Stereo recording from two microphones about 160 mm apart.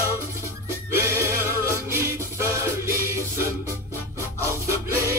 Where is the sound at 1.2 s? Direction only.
15° right (ahead or behind).